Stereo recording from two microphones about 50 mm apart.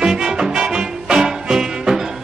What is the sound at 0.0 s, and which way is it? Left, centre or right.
Music, centre.